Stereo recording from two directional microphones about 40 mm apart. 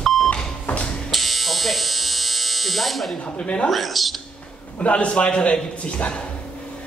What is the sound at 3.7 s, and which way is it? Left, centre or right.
Speech, centre.